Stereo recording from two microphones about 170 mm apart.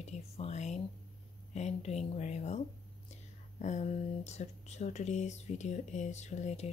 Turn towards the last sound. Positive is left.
turn(degrees=40)  # may be behind; listen again after turning